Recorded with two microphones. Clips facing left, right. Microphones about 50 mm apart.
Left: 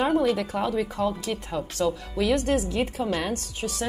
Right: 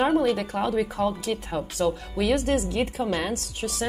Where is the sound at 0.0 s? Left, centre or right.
Centre.